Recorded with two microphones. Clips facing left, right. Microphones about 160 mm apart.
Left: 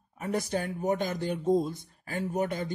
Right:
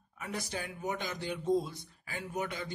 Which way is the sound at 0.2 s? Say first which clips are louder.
Left 8 dB; 45° left (ahead or behind).